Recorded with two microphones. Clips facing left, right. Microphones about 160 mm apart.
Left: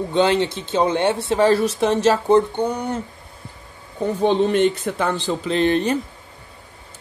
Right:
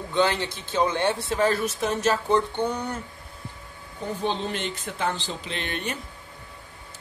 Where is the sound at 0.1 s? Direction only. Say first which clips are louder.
Left 5 dB; 20° left (ahead or behind).